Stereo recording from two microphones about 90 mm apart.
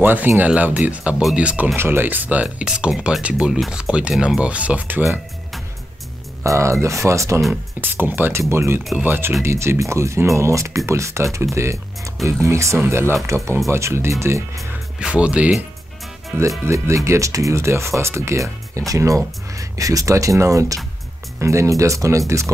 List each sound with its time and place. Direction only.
0.0 s speech: 20° right (ahead or behind)
1.8 s speech: 25° right (ahead or behind)
6.4 s speech: 35° right (ahead or behind)
7.8 s speech: 25° right (ahead or behind)
15.0 s speech: 10° right (ahead or behind)
16.3 s speech: 35° right (ahead or behind)